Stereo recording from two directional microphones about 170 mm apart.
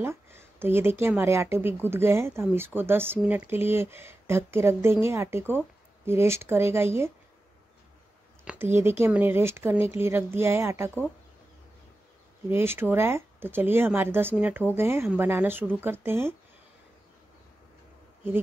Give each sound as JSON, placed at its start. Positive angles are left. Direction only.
{"t": 0.0, "sound": "a woman's voice", "side_deg": -15}
{"t": 8.5, "sound": "a woman's voice", "side_deg": -15}
{"t": 12.4, "sound": "a woman's voice", "side_deg": -15}